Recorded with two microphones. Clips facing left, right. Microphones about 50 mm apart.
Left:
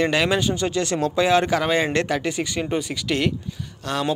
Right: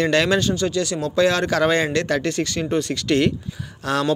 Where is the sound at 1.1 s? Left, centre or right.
Centre.